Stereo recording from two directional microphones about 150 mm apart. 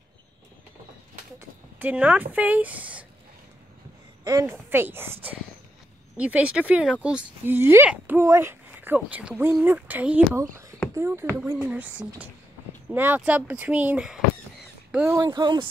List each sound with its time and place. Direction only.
1.8 s speech: 10° right (ahead or behind)
4.2 s speech: 25° right (ahead or behind)
15.1 s speech: 25° right (ahead or behind)